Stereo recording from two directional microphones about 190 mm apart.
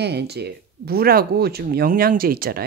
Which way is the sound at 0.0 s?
60° right (ahead or behind).